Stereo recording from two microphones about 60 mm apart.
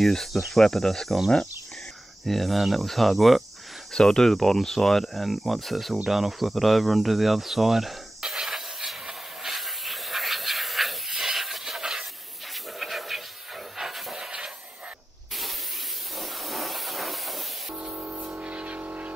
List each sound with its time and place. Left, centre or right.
0.0 s speech: centre
6.0 s cricket: centre
12.7 s a sound: centre
13.7 s hiss: centre
16.2 s steam: centre
17.9 s a sound: right